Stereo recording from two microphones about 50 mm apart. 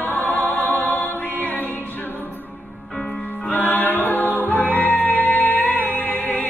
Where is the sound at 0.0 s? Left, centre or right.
Left.